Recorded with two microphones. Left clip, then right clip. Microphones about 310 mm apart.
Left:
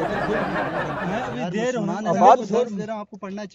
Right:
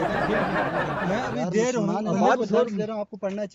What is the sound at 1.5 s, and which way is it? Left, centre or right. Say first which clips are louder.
Speech: right 2 dB; left.